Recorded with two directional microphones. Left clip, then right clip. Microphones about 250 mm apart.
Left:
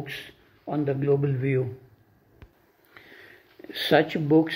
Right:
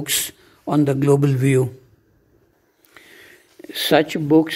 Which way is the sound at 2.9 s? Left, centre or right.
Right.